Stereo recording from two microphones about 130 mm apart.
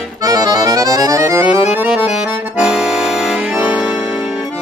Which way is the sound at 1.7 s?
10° right (ahead or behind).